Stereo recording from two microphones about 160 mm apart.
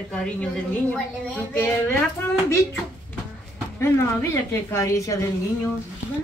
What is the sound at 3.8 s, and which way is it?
A woman's voice, 15° left (ahead or behind).